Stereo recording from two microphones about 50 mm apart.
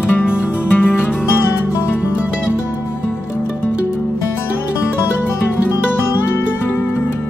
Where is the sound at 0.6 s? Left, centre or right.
Left.